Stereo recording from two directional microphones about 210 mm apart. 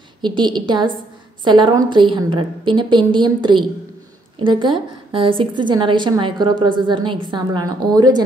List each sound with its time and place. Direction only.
0.2 s a woman's voice: 20° right (ahead or behind)